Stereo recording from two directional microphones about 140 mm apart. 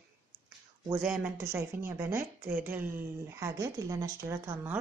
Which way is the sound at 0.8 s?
20° right (ahead or behind).